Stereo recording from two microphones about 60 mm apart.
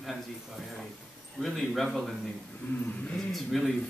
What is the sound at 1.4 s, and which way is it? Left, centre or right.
Speech, centre.